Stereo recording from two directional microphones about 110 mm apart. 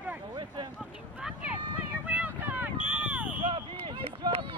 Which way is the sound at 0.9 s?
10° right (ahead or behind).